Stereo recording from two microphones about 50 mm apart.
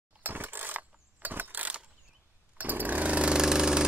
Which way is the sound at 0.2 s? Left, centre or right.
Right.